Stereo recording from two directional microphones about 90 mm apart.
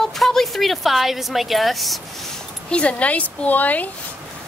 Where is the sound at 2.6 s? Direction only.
10° left (ahead or behind).